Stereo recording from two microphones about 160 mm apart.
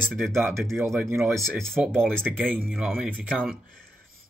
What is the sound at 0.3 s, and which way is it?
Speech, 15° right (ahead or behind).